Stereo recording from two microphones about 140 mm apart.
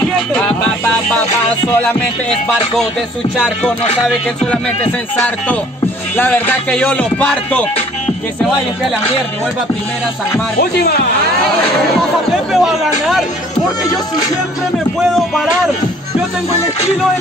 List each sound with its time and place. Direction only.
3.3 s speech: 5° left (ahead or behind)
3.8 s music: 50° left (ahead or behind)
6.1 s music: 15° left (ahead or behind)
12.0 s speech: centre (ahead or behind)